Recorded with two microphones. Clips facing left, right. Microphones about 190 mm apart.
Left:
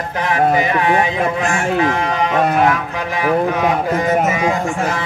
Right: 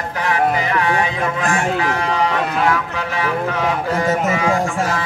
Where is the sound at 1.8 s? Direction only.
20° left (ahead or behind).